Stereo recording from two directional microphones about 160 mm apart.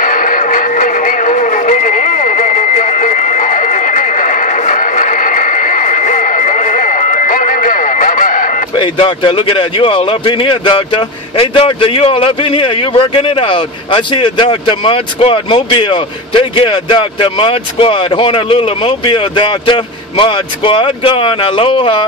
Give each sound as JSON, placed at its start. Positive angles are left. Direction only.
{"t": 0.0, "sound": "music", "side_deg": 55}
{"t": 8.7, "sound": "speech", "side_deg": 30}